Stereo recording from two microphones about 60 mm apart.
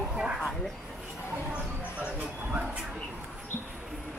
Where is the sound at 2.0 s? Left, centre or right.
Right.